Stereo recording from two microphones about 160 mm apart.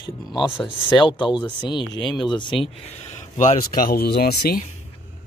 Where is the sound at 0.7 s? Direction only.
30° left (ahead or behind).